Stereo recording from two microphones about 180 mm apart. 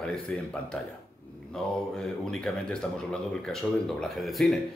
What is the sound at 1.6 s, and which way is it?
Speech, 5° left (ahead or behind).